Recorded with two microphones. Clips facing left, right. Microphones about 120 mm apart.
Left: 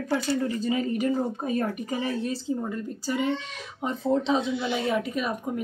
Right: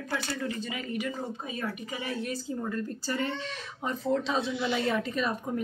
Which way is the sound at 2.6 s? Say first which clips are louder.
Left 2 dB; 15° left (ahead or behind).